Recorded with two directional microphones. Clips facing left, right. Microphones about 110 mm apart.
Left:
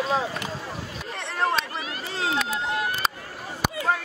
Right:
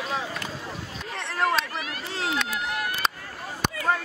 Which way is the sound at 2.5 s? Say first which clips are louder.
Left 3 dB; 30° left (ahead or behind).